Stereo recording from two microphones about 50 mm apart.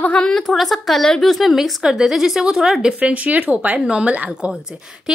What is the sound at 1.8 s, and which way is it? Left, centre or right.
Speech, centre.